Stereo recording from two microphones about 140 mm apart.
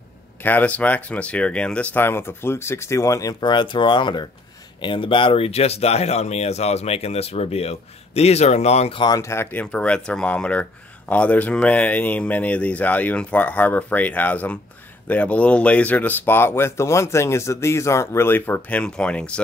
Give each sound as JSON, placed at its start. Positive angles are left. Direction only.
{"t": 0.4, "sound": "speech", "side_deg": 10}
{"t": 9.0, "sound": "speech", "side_deg": 25}